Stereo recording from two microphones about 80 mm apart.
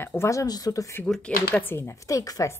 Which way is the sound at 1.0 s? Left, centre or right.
Centre.